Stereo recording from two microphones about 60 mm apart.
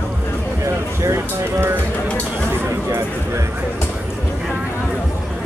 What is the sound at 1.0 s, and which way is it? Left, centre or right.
Music, right.